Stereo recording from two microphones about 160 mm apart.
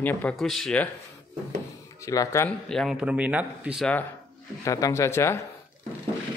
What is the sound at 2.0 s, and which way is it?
Speech, 20° left (ahead or behind).